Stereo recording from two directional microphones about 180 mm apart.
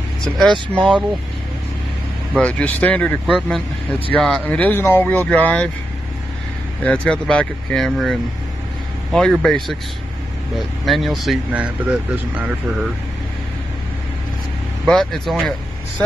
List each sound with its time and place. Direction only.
0.2 s speech: 5° left (ahead or behind)
2.3 s speech: 10° left (ahead or behind)
6.8 s speech: 5° left (ahead or behind)
10.9 s speech: centre (ahead or behind)
14.9 s speech: centre (ahead or behind)